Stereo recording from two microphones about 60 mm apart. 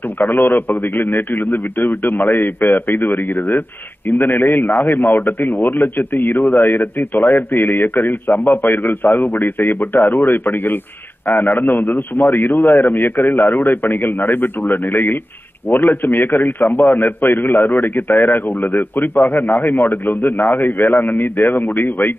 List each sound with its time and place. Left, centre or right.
0.3 s a man's voice: left
6.1 s a man's voice: left
6.4 s a man's voice: left